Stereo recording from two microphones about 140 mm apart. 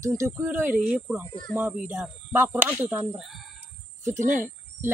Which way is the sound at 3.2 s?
Centre (ahead or behind).